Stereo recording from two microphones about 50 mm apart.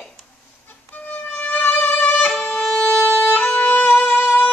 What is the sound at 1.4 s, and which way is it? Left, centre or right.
Violin, left.